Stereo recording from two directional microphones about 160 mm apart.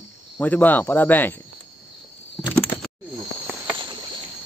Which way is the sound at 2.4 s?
10° left (ahead or behind).